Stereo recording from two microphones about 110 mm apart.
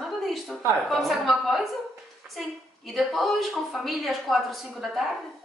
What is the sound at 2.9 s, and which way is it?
Speech, centre (ahead or behind).